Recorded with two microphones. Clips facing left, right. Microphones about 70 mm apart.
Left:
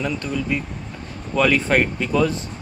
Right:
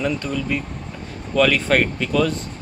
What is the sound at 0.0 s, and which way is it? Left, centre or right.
Speech, centre.